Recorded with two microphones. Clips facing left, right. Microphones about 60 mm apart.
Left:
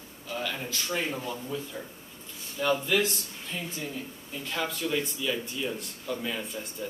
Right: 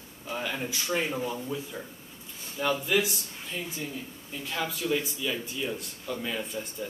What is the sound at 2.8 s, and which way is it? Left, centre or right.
Speech, centre.